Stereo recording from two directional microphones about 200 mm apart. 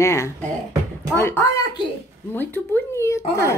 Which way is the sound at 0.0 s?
15° left (ahead or behind).